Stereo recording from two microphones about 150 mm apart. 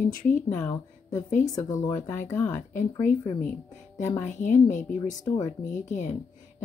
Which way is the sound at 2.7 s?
55° left (ahead or behind).